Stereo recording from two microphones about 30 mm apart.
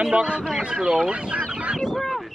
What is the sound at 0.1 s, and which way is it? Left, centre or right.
Speech, right.